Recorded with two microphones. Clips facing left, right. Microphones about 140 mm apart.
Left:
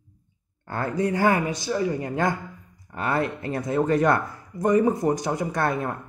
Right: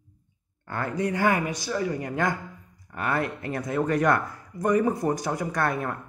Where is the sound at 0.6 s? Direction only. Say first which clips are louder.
Left 3 dB; 35° left (ahead or behind).